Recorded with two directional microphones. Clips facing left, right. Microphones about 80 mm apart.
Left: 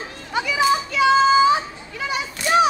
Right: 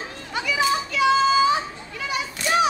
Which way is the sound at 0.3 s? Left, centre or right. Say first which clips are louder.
Left 4 dB; left.